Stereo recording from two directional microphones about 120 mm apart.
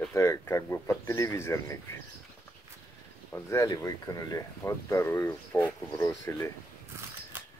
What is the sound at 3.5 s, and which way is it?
Speech, 30° left (ahead or behind).